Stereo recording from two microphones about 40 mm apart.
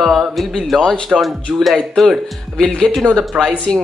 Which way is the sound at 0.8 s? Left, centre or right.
Centre.